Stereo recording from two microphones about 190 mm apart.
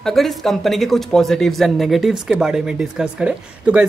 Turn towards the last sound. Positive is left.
turn(degrees=-5)  # may be behind; listen again after turning